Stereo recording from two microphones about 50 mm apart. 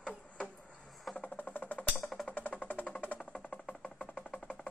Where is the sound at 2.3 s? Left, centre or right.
Left.